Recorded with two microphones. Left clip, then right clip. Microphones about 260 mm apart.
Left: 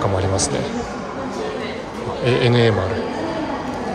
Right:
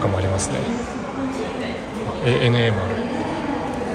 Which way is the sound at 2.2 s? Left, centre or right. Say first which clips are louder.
Left 3 dB; centre.